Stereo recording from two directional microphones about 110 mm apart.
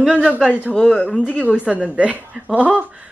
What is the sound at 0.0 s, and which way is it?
Speech, 10° right (ahead or behind).